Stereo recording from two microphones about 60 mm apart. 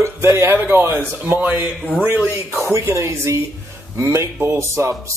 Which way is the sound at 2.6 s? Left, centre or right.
Right.